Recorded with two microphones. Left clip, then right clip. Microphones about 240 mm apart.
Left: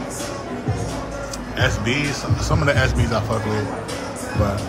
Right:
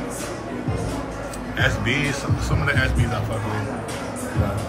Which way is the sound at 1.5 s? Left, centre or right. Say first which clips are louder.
Left 1 dB; centre.